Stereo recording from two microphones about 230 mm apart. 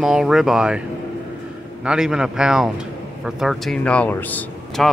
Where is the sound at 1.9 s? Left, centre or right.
Centre.